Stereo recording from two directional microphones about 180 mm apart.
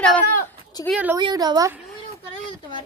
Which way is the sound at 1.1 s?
20° right (ahead or behind).